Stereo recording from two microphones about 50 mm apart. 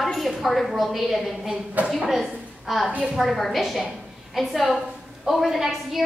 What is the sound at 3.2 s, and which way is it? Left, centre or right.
A woman's voice, centre.